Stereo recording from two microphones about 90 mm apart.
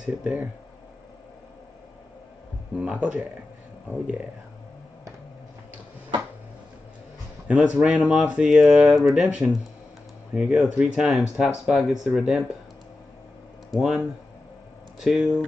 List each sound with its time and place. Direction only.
0.0 s speech: 15° right (ahead or behind)
2.8 s speech: 15° right (ahead or behind)
7.4 s speech: 15° right (ahead or behind)
7.8 s speech: 5° right (ahead or behind)
10.3 s speech: 10° right (ahead or behind)
13.7 s speech: 5° right (ahead or behind)